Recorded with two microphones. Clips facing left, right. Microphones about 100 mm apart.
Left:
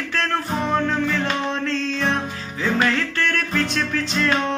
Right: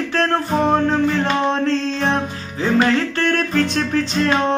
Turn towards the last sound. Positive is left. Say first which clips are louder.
# right 4 dB
turn(degrees=-35)  # may be behind; listen again after turning